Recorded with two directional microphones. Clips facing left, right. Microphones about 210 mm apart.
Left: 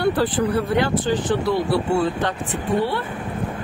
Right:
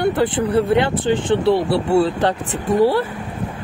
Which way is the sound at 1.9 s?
40° right (ahead or behind).